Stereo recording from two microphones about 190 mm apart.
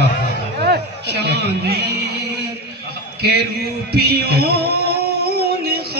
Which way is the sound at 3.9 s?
55° right (ahead or behind).